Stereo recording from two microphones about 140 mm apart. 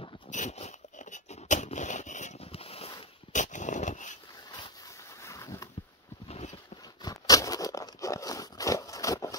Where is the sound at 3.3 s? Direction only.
60° left (ahead or behind).